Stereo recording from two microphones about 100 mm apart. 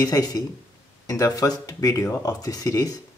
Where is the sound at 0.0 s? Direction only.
40° left (ahead or behind).